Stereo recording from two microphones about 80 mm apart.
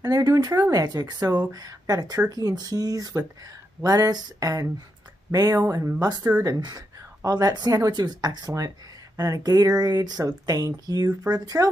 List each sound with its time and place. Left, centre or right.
0.0 s speech: right
5.6 s speech: right
6.4 s speech: right